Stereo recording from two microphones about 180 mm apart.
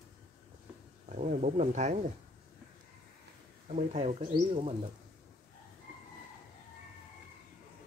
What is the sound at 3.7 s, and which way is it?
Speech, 40° right (ahead or behind).